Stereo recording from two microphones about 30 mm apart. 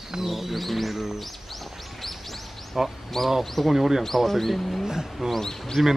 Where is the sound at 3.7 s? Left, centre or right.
Centre.